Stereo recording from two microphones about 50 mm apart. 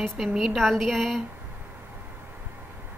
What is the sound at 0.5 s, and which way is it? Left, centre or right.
Speech, centre.